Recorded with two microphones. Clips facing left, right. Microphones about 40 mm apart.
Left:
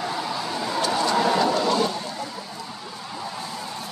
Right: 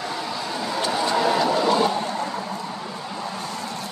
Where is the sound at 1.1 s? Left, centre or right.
Centre.